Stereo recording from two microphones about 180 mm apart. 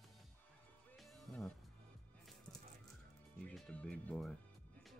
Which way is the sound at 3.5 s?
5° left (ahead or behind).